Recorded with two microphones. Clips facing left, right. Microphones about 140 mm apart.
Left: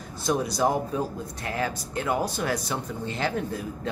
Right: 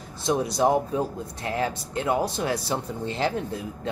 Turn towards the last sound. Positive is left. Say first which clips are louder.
# even
turn(degrees=-25)  # may be behind; listen again after turning